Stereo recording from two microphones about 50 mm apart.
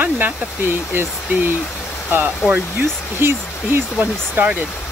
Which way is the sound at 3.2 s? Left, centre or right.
Right.